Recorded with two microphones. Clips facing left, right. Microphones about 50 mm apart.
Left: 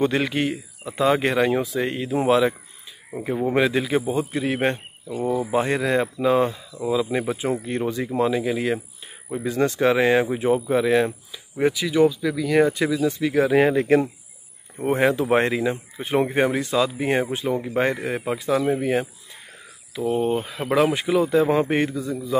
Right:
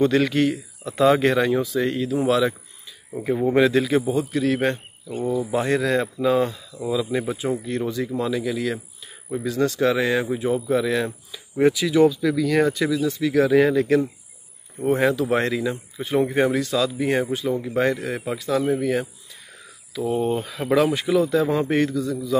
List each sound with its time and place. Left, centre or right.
0.0 s speech: centre
3.3 s speech: centre
4.1 s speech: left
5.3 s speech: centre
6.8 s speech: centre
7.3 s speech: left
11.3 s speech: centre
12.4 s speech: centre
12.7 s speech: left
20.1 s speech: centre; by 22.4 s left